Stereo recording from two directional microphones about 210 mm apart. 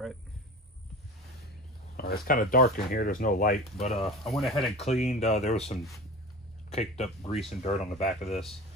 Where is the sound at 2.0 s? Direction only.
50° left (ahead or behind).